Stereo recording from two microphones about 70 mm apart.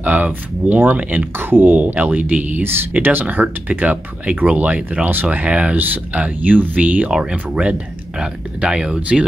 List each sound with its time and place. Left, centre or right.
0.0 s speech: right
7.1 s speech: centre